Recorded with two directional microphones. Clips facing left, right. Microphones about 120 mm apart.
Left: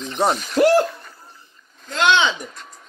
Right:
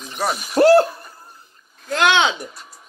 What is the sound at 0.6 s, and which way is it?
Speech, 35° right (ahead or behind).